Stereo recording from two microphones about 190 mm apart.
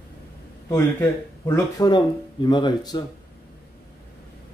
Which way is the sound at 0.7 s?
15° left (ahead or behind).